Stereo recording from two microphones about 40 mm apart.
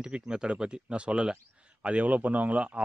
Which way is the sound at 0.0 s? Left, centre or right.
Right.